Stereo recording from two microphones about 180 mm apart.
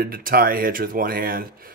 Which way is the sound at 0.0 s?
55° right (ahead or behind).